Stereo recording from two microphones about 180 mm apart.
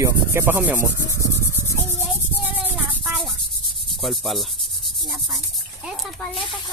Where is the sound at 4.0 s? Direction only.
Centre (ahead or behind).